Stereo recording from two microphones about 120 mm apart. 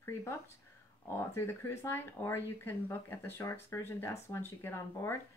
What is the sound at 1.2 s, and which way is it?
Speech, 20° left (ahead or behind).